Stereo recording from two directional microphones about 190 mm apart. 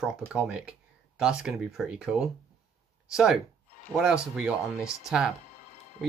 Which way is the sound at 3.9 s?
5° right (ahead or behind).